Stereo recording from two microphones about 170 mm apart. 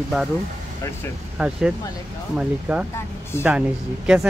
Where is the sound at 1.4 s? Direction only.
5° right (ahead or behind).